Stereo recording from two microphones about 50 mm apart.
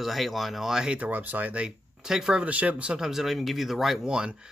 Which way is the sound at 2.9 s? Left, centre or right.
Centre.